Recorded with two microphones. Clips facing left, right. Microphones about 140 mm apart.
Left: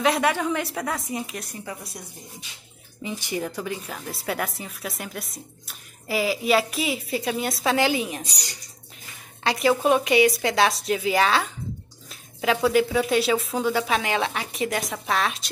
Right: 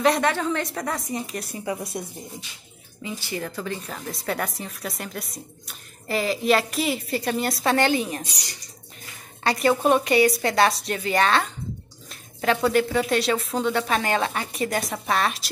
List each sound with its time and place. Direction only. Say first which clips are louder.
0.0 s a woman's voice: right 1 dB; centre (ahead or behind)
1.6 s speech: right 7 dB; 15° right (ahead or behind)
3.0 s a woman's voice: left 2 dB; 15° left (ahead or behind)
9.4 s a woman's voice: even; centre (ahead or behind)